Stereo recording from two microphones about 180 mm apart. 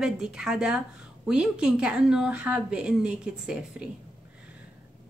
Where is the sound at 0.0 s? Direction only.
5° right (ahead or behind).